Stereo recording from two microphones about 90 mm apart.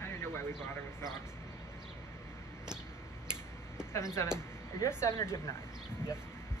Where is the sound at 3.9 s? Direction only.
30° left (ahead or behind).